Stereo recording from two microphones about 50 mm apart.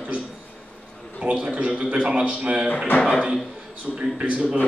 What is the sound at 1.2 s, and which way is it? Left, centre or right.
A man's voice, right.